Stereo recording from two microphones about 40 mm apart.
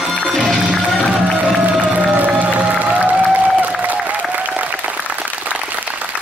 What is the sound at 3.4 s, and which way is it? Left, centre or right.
Applause, right.